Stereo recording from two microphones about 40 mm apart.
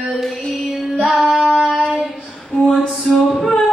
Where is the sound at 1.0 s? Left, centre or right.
Centre.